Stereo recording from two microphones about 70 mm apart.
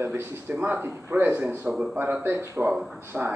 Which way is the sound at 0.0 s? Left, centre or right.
Right.